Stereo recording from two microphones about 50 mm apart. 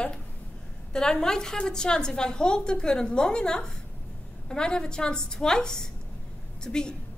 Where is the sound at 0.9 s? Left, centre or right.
Centre.